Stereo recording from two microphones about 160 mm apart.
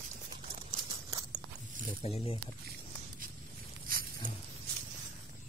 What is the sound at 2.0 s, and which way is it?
Speech, 40° left (ahead or behind).